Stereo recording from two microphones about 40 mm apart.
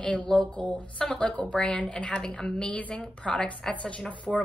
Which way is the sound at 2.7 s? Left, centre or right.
Left.